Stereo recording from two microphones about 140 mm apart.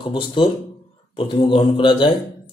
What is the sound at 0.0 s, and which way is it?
Speech, 35° left (ahead or behind).